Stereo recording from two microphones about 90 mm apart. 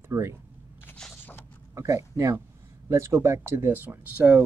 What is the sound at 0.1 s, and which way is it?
Speech, 30° right (ahead or behind).